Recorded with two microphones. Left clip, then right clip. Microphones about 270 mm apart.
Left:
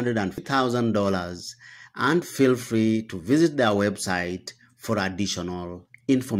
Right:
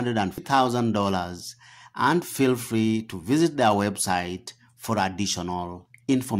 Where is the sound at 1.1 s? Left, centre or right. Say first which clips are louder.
Right 1 dB; right.